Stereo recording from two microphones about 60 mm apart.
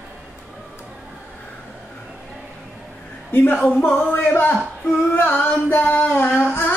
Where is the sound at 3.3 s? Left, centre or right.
Left.